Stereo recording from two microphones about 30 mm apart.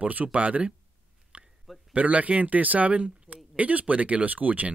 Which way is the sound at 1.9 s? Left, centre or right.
Right.